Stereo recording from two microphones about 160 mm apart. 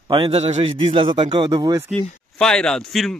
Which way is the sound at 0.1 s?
35° right (ahead or behind).